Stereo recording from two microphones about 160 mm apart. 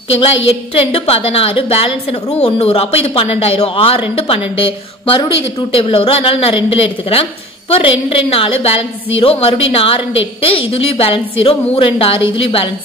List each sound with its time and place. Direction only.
0.1 s a woman's voice: 35° left (ahead or behind)